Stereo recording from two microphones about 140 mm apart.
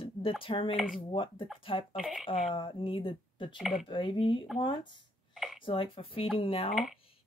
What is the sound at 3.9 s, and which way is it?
Speech, 35° left (ahead or behind).